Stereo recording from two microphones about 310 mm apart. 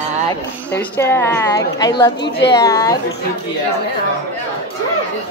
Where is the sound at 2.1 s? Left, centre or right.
Left.